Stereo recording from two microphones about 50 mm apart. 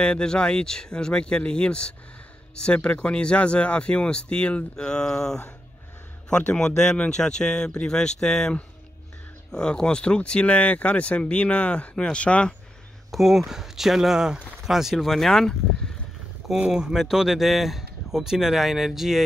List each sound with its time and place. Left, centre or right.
0.0 s speech: centre
13.1 s speech: centre
15.1 s speech: centre
16.4 s speech: centre